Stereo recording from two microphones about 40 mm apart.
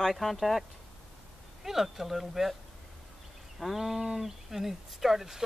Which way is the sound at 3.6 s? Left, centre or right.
Centre.